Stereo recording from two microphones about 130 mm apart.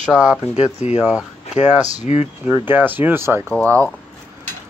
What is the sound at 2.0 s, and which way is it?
Speech, 60° left (ahead or behind).